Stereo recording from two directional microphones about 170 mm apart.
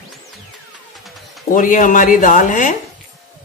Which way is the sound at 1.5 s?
50° left (ahead or behind).